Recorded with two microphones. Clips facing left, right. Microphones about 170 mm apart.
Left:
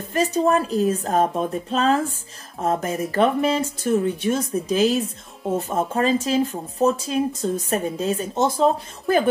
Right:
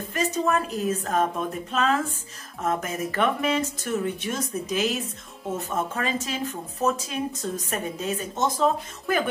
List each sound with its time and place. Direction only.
0.1 s speech: 35° left (ahead or behind)